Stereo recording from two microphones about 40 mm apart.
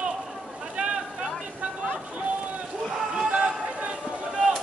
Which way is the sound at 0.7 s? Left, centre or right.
Right.